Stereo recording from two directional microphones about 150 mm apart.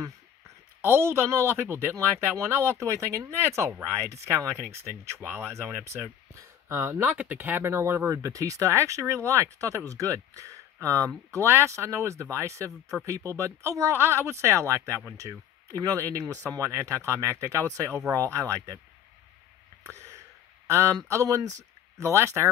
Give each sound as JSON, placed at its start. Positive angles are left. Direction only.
{"t": 0.8, "sound": "speech", "side_deg": -15}
{"t": 19.8, "sound": "a sound", "side_deg": -20}
{"t": 20.6, "sound": "a man's voice", "side_deg": -20}